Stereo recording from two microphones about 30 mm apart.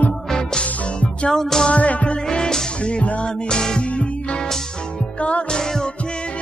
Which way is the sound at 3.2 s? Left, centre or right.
Left.